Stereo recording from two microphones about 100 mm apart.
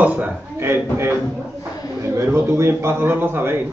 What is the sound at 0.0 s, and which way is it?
A man's voice, 15° right (ahead or behind).